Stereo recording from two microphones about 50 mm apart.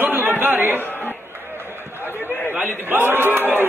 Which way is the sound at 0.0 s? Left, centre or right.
Right.